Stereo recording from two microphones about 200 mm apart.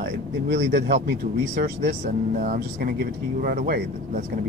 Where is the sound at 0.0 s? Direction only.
60° right (ahead or behind).